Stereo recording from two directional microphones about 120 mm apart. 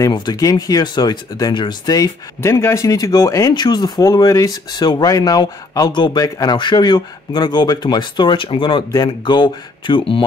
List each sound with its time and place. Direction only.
0.0 s speech: 35° left (ahead or behind)